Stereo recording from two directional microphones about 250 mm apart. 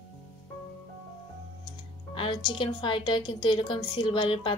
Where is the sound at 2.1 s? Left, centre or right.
Centre.